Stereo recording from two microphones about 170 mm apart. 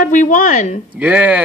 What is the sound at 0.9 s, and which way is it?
Speech, 10° right (ahead or behind).